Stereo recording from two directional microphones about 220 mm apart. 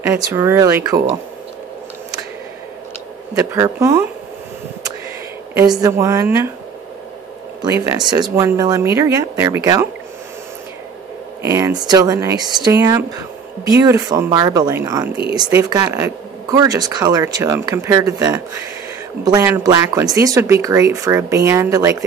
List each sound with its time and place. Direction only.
0.0 s speech: 10° right (ahead or behind)
3.3 s speech: 15° right (ahead or behind)
5.6 s speech: 10° right (ahead or behind)
7.6 s speech: 15° right (ahead or behind)
11.4 s speech: 15° right (ahead or behind)